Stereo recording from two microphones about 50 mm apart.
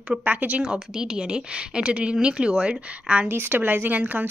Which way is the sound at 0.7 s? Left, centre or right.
Centre.